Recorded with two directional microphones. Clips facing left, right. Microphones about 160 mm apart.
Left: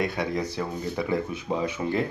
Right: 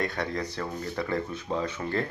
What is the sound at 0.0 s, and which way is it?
Speech, 10° left (ahead or behind).